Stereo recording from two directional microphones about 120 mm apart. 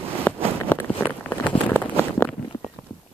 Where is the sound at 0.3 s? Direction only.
15° left (ahead or behind).